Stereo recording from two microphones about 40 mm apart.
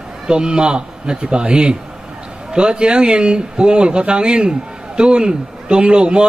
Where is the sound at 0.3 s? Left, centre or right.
Right.